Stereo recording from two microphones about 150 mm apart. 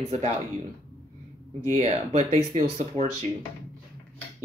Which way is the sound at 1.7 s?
50° right (ahead or behind).